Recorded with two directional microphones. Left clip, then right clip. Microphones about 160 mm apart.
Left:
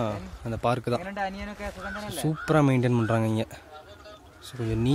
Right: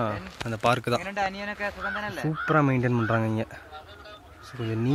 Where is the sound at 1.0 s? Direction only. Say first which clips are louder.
Right 3 dB; 85° left.